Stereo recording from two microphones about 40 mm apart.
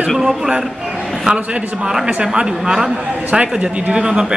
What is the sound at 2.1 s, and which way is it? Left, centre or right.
Speech, right.